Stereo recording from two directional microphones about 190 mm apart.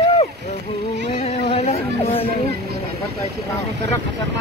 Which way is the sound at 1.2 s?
35° left (ahead or behind).